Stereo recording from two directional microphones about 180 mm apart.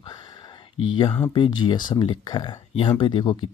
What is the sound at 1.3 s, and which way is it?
Speech, 25° left (ahead or behind).